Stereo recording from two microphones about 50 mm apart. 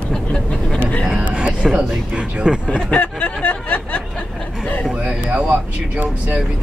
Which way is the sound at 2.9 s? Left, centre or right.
Left.